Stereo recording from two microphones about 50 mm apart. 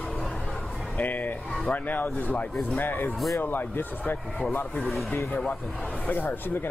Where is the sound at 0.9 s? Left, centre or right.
Left.